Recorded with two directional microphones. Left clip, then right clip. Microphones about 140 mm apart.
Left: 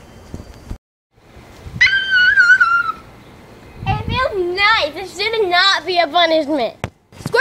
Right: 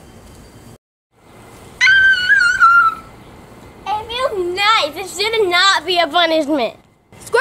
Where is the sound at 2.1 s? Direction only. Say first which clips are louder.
Left 2 dB; 25° left (ahead or behind).